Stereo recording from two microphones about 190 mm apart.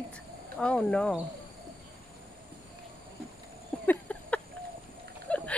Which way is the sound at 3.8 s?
5° left (ahead or behind).